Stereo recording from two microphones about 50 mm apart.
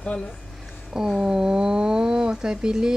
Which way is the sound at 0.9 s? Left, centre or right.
Centre.